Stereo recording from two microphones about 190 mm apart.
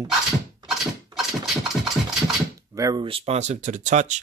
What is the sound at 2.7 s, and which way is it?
Speech, 20° right (ahead or behind).